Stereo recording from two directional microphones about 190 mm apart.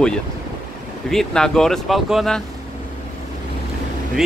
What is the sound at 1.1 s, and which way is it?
Speech, 5° left (ahead or behind).